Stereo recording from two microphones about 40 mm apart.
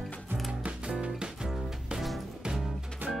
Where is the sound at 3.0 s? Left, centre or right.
Right.